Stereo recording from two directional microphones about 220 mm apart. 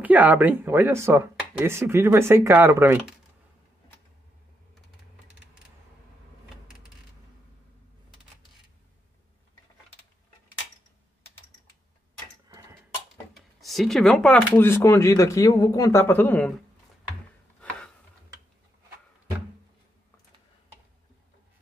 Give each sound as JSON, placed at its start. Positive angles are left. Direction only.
{"t": 0.0, "sound": "speech", "side_deg": -5}
{"t": 13.3, "sound": "speech", "side_deg": 0}
{"t": 17.6, "sound": "a sound", "side_deg": 5}